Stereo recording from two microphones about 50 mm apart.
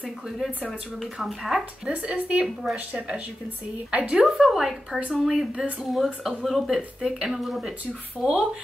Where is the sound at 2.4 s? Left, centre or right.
Centre.